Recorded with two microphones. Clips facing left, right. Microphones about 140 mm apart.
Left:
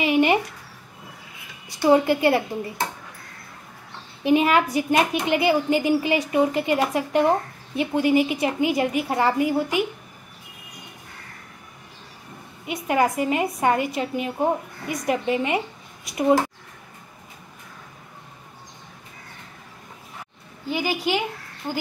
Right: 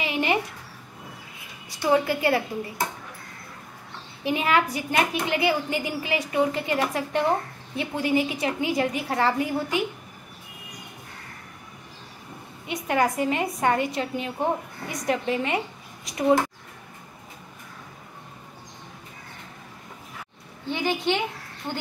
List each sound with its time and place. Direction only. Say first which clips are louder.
0.0 s a sound: left 6 dB; 15° left (ahead or behind)
1.9 s a woman's voice: left 4 dB; 25° left (ahead or behind)
4.2 s a woman's voice: left 5 dB; 20° left (ahead or behind)
12.6 s a woman's voice: left 2 dB; 10° left (ahead or behind)
20.6 s a woman's voice: left 1 dB; 5° left (ahead or behind)